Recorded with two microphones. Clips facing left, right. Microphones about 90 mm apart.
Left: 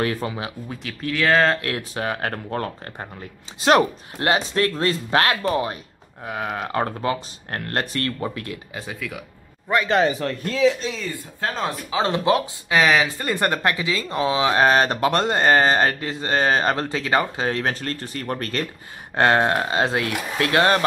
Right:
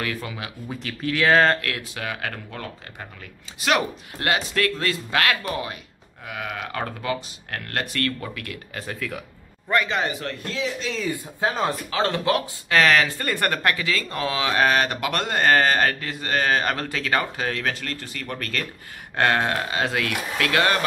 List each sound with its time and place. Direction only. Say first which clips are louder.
0.0 s speech: left 6 dB; 30° left (ahead or behind)
0.7 s speech: right 1 dB; centre (ahead or behind)
1.6 s speech: left 4 dB; 30° left (ahead or behind)
8.7 s speech: right 3 dB; 5° left (ahead or behind)
11.1 s speech: right 3 dB; 15° right (ahead or behind)
11.9 s speech: left 5 dB; 20° left (ahead or behind)